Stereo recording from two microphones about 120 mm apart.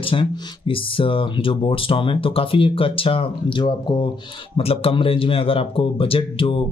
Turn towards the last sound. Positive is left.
turn(degrees=50)  # may be behind; listen again after turning